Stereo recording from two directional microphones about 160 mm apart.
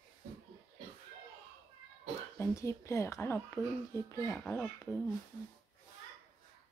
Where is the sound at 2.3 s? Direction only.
20° left (ahead or behind).